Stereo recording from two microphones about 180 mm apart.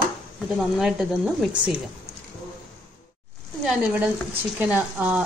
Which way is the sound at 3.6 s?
5° right (ahead or behind).